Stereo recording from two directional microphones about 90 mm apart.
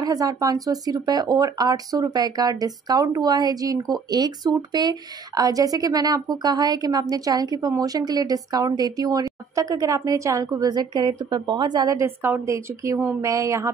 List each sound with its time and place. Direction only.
0.0 s a woman's voice: 45° right (ahead or behind)
12.0 s a woman's voice: 30° right (ahead or behind)